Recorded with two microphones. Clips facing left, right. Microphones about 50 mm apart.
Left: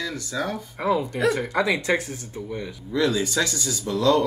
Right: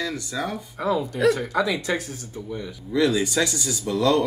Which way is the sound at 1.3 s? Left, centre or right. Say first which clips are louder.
Left 1 dB; left.